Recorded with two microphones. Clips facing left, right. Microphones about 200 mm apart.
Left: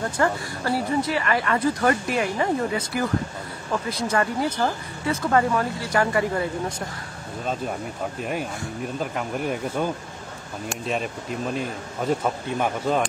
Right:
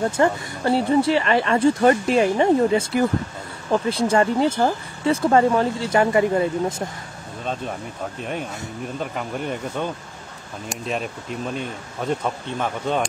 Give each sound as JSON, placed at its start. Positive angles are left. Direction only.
{"t": 0.2, "sound": "speech", "side_deg": -25}
{"t": 8.2, "sound": "speech", "side_deg": 5}